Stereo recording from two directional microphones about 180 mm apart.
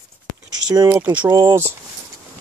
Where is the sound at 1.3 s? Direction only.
25° right (ahead or behind).